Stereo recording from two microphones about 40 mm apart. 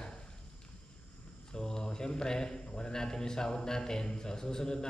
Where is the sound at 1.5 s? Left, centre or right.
Centre.